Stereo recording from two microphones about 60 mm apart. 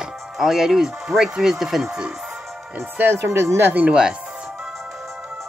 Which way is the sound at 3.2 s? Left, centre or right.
Right.